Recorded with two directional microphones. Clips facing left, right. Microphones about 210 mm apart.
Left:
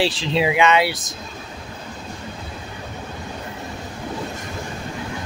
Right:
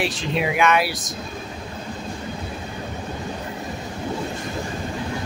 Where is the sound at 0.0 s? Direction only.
30° left (ahead or behind).